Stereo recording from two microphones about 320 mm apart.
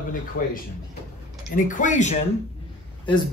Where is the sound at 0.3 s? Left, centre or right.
Left.